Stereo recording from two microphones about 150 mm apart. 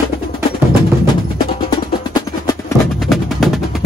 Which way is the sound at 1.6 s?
25° left (ahead or behind).